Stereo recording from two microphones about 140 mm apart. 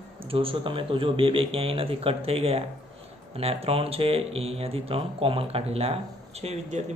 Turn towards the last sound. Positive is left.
turn(degrees=-50)  # may be behind; listen again after turning